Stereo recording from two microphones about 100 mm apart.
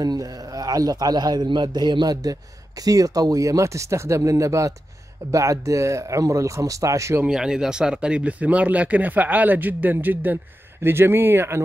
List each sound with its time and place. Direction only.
0.0 s a man's voice: 40° right (ahead or behind)
7.2 s speech: 5° right (ahead or behind); by 11.6 s 25° right (ahead or behind)